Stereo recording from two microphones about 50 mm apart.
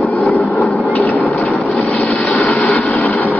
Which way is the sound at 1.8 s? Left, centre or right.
Left.